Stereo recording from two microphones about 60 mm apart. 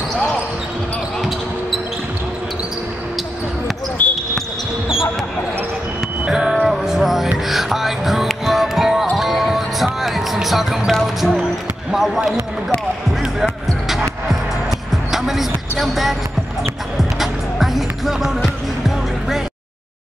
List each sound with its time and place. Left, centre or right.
4.0 s basketball bounce: left
6.2 s music: centre
6.5 s music: centre
11.9 s a sound: centre
13.2 s music: centre
15.0 s basketball bounce: centre
16.9 s music: centre